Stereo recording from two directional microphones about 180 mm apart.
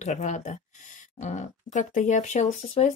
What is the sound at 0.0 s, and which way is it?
Speech, 40° left (ahead or behind).